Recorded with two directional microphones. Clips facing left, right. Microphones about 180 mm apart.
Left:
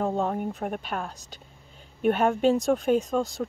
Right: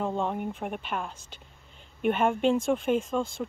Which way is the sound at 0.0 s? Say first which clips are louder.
Left 3 dB; 40° left (ahead or behind).